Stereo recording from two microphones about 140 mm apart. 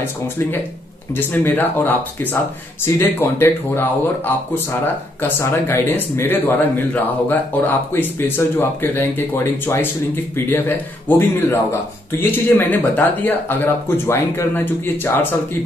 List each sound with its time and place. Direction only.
1.1 s speech: 15° left (ahead or behind)
5.4 s speech: 15° left (ahead or behind)